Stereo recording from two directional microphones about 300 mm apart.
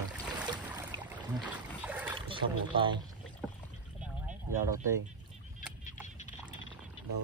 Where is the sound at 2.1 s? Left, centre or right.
Centre.